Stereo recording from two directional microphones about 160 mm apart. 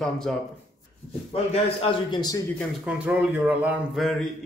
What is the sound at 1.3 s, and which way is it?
A man's voice, 35° left (ahead or behind).